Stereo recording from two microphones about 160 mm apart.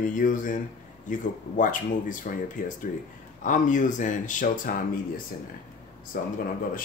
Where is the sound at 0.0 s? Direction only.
55° left (ahead or behind).